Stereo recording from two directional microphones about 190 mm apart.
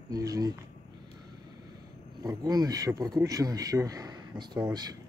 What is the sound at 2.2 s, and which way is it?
Speech, 20° right (ahead or behind).